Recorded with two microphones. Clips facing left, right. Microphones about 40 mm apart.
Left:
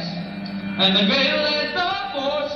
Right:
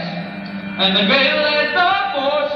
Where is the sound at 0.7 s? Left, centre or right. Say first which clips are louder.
Right 2 dB; centre.